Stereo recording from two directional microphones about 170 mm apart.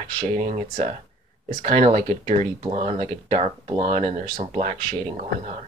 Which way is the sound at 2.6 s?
35° right (ahead or behind).